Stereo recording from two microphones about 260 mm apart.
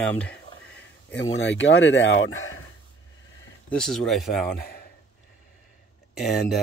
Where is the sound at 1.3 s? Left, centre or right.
Left.